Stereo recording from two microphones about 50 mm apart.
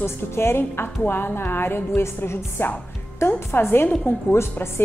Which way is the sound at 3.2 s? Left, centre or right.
Left.